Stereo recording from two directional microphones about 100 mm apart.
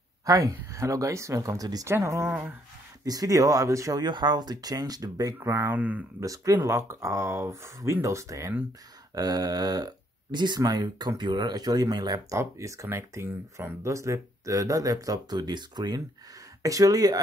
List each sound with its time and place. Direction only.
0.3 s speech: 30° right (ahead or behind)
4.0 s speech: 45° right (ahead or behind)
5.4 s speech: 25° right (ahead or behind)
6.2 s speech: 35° right (ahead or behind)
12.4 s speech: 30° right (ahead or behind)